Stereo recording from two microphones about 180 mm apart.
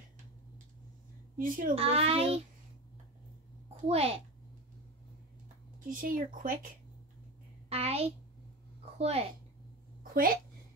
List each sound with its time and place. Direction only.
1.4 s speech: 50° right (ahead or behind)
1.8 s a child's voice: 35° right (ahead or behind)
3.8 s a child's voice: 35° right (ahead or behind)
5.9 s speech: 50° right (ahead or behind)
7.7 s a sound: 35° right (ahead or behind)
8.9 s a child's voice: 35° right (ahead or behind)